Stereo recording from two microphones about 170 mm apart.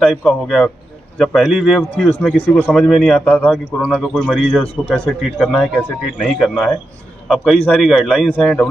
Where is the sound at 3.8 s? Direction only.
5° right (ahead or behind).